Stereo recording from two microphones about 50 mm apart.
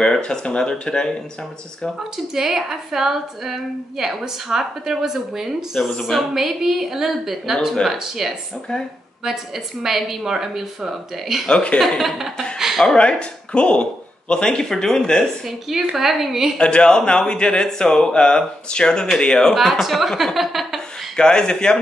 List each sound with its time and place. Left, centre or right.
0.0 s speech: centre
2.3 s a woman's voice: centre
5.8 s speech: centre
6.3 s a woman's voice: centre
9.8 s a woman's voice: centre
11.4 s speech: left
12.0 s speech: centre
12.5 s a sound: centre
12.8 s speech: centre
16.0 s speech: centre
16.5 s speech: centre
19.5 s speech: centre
21.2 s speech: centre